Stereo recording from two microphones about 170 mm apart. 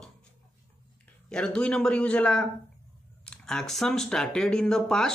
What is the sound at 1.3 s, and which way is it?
Speech, 5° left (ahead or behind).